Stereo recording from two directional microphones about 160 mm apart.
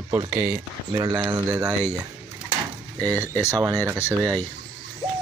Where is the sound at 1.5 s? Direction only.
10° right (ahead or behind).